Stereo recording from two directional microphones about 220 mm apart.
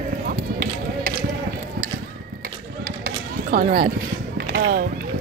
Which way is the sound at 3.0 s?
40° right (ahead or behind).